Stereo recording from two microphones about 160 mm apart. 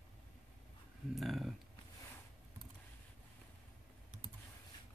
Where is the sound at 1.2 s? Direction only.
Centre (ahead or behind).